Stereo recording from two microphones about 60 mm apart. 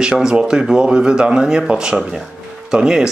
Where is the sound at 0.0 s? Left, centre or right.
Centre.